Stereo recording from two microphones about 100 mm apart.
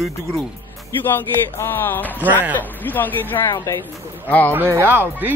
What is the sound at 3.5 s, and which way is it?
Speech, 35° left (ahead or behind).